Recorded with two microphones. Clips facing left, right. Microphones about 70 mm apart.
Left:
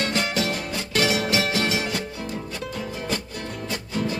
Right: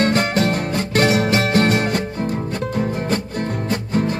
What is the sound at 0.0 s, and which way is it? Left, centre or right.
Music, right.